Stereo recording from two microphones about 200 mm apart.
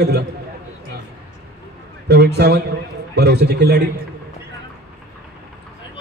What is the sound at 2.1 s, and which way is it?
A man's voice, 55° right (ahead or behind).